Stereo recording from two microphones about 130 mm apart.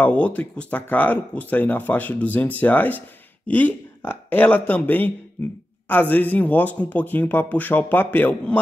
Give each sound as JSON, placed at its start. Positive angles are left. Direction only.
{"t": 0.0, "sound": "speech", "side_deg": 10}